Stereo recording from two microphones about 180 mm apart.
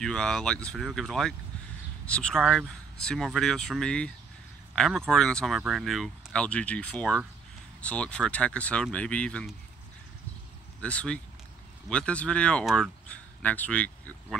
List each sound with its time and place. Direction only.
0.0 s speech: 5° left (ahead or behind)
10.8 s a man's voice: 5° left (ahead or behind)